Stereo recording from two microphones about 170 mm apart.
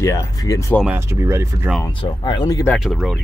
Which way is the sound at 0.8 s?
15° right (ahead or behind).